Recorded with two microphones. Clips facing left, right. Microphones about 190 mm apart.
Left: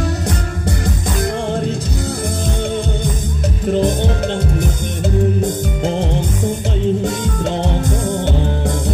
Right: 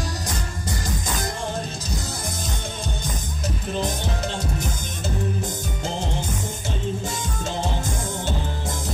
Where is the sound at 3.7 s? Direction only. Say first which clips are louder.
Left 12 dB; 55° left (ahead or behind).